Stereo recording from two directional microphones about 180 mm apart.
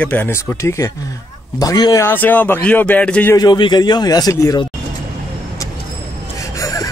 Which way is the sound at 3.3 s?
25° left (ahead or behind).